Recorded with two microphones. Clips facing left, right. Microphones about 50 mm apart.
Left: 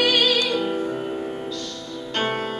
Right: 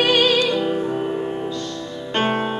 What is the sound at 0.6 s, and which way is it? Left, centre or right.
Music, centre.